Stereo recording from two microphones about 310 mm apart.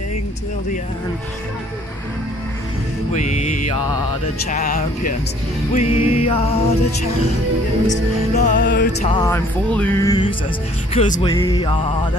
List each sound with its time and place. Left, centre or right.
3.1 s music: left
8.4 s music: left
9.0 s music: centre